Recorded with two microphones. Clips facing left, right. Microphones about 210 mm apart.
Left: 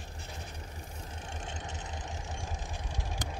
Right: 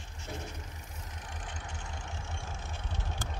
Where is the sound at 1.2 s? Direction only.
25° left (ahead or behind).